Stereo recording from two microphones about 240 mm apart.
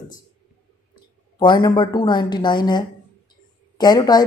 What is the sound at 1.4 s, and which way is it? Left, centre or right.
A woman's voice, centre.